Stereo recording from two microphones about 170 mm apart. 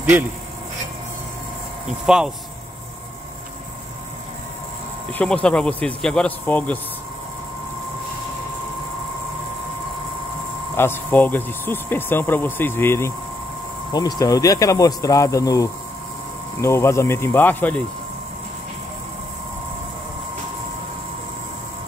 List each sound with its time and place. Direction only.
1.9 s speech: 5° right (ahead or behind)
5.1 s speech: 5° left (ahead or behind)
10.8 s speech: 10° left (ahead or behind)